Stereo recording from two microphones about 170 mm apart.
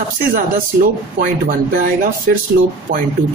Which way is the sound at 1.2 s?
50° right (ahead or behind).